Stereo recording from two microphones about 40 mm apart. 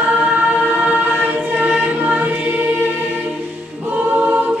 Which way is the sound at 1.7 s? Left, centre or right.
Right.